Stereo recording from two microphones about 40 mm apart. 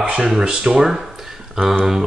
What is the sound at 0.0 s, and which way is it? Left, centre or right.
Speech, centre.